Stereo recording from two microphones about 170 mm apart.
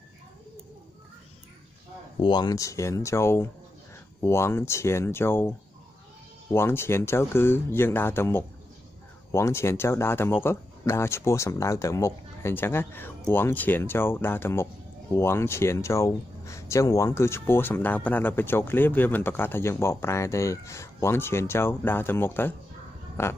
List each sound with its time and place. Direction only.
2.1 s speech: 25° left (ahead or behind)
6.5 s speech: 15° left (ahead or behind)